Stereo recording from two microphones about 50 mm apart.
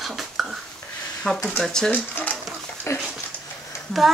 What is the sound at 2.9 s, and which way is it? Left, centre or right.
Dog, left.